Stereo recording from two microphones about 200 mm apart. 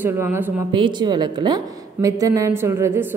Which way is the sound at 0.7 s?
25° right (ahead or behind).